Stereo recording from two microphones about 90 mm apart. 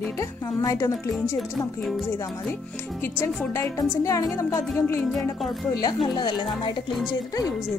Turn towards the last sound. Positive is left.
turn(degrees=40)  # may be behind; listen again after turning